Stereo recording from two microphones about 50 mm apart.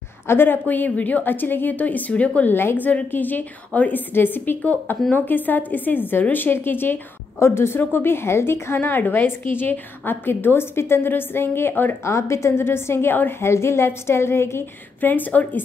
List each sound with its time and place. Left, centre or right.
0.3 s a woman's voice: left
2.5 s a woman's voice: left
7.3 s a woman's voice: left
8.7 s a woman's voice: left
12.0 s a woman's voice: left
13.4 s a woman's voice: left
15.0 s a woman's voice: left